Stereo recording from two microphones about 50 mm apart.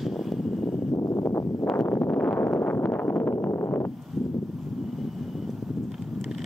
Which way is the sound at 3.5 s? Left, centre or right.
Left.